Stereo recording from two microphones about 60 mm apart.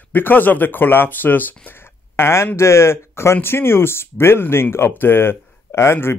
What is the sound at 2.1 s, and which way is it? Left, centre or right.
Speech, left.